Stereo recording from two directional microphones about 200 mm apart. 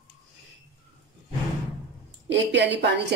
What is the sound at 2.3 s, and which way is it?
Speech, 60° right (ahead or behind).